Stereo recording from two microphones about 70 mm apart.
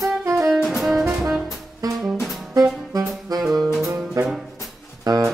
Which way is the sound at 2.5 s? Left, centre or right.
Right.